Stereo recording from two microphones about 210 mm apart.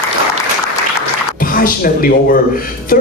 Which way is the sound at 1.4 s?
40° left (ahead or behind).